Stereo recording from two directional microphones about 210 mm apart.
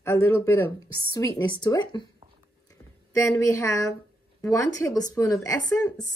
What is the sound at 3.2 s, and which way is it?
A woman's voice, 15° left (ahead or behind).